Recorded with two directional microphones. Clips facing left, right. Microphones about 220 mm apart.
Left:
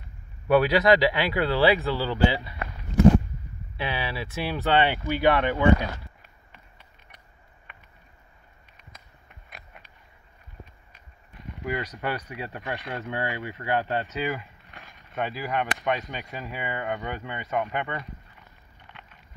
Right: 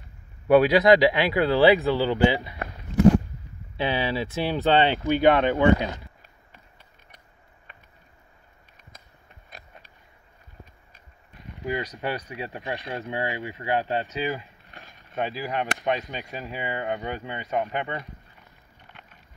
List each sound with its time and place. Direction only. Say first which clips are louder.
0.5 s speech: right 3 dB; 15° right (ahead or behind)
3.7 s speech: right 5 dB; 20° right (ahead or behind)
7.7 s a sound: even; 35° right (ahead or behind)
9.5 s a sound: right 1 dB; 40° right (ahead or behind)
12.0 s speech: right 1 dB; 30° right (ahead or behind)
13.1 s speech: right 1 dB; 15° right (ahead or behind)